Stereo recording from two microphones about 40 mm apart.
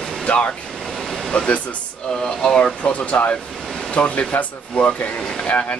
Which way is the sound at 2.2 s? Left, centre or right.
Centre.